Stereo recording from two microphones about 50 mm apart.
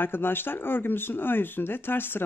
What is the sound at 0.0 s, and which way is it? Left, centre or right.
Speech, left.